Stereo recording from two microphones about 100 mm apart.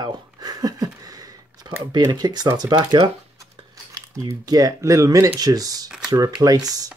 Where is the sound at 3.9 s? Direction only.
35° right (ahead or behind).